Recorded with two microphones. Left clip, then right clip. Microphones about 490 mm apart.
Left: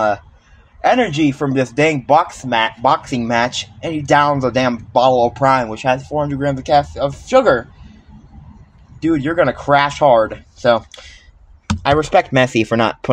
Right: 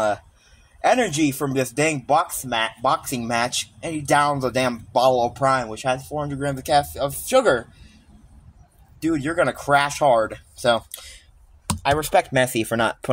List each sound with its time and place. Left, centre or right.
0.7 s speech: right
9.0 s speech: right